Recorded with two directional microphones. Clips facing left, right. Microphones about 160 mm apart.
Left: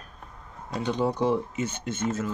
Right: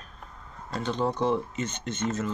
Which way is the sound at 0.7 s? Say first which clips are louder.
Left 2 dB; 15° left (ahead or behind).